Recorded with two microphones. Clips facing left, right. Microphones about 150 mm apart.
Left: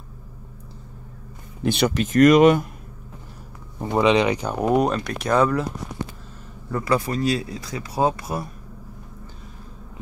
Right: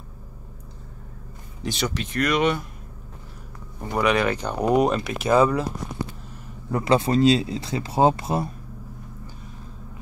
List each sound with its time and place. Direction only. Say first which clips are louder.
1.6 s speech: left 7 dB; 60° left (ahead or behind)
3.8 s speech: left 3 dB; 20° left (ahead or behind); by 5.7 s 5° right (ahead or behind)
6.7 s speech: right 3 dB; 20° right (ahead or behind)